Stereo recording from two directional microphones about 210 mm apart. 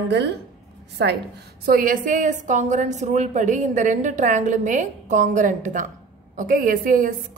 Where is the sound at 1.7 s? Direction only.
40° right (ahead or behind).